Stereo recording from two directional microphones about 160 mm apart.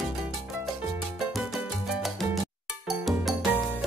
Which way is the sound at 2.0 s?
Centre (ahead or behind).